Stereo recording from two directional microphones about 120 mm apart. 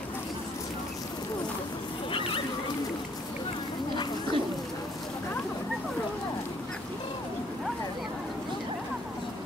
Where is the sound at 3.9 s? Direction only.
40° left (ahead or behind).